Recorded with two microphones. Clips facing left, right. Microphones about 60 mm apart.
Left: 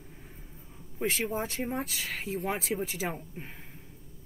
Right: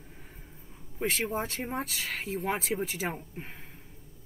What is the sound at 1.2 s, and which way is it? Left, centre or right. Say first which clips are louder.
Speech: left 1 dB; centre.